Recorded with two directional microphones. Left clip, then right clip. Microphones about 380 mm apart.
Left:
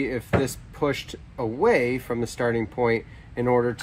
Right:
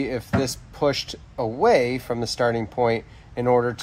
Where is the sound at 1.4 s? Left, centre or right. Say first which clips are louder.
Right 3 dB; right.